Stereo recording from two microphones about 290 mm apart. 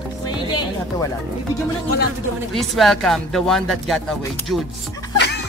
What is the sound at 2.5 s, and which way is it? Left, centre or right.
Speech, centre.